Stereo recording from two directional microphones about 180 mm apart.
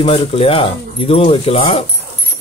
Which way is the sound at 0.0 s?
30° left (ahead or behind).